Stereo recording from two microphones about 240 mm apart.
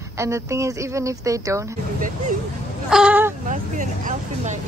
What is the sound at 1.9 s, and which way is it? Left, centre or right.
Speech, right.